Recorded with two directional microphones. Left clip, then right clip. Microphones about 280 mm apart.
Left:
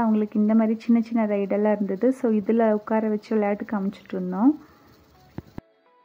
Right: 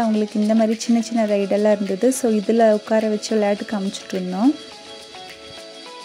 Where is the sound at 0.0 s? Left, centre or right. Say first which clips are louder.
Right 3 dB; centre.